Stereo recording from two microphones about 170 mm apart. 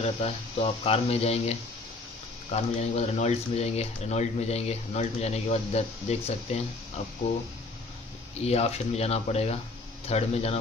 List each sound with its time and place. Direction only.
0.0 s speech: 35° left (ahead or behind)
2.5 s speech: 40° left (ahead or behind)
8.4 s speech: 40° left (ahead or behind)